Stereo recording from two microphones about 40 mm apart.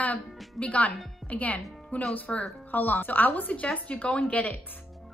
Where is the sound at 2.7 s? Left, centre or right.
Left.